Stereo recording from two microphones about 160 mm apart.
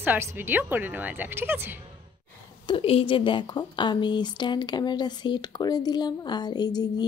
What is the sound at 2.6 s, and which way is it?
A woman's voice, 35° left (ahead or behind).